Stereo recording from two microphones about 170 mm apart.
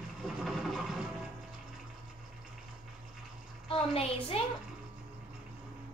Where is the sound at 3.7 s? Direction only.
35° left (ahead or behind).